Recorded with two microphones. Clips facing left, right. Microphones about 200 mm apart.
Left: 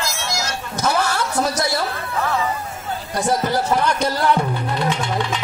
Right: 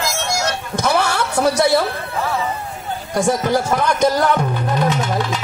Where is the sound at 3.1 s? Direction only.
50° right (ahead or behind).